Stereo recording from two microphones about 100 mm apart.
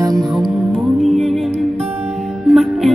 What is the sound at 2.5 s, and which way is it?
Music, centre (ahead or behind).